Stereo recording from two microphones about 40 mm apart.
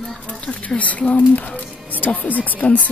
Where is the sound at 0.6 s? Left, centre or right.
Left.